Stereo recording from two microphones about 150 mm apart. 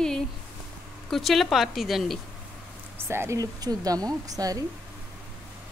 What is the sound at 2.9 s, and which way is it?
Speech, 15° right (ahead or behind).